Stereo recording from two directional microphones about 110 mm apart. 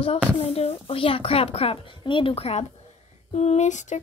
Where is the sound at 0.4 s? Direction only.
70° left (ahead or behind).